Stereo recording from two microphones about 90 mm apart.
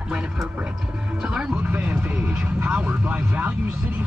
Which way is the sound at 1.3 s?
15° right (ahead or behind).